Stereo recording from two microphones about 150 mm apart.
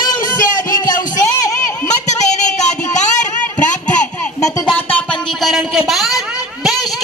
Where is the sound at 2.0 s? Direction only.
50° left (ahead or behind).